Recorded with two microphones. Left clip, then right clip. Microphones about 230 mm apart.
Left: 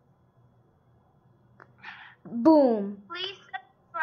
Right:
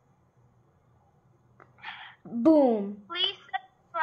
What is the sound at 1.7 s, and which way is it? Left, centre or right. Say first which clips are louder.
Sneeze: right 3 dB; right.